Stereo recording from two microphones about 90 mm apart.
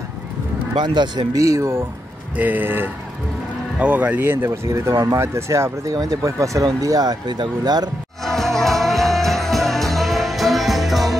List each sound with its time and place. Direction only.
0.7 s speech: 55° right (ahead or behind)
1.3 s speech: 35° right (ahead or behind)
2.3 s speech: 20° right (ahead or behind); by 7.9 s 50° right (ahead or behind)
8.2 s music: 5° left (ahead or behind)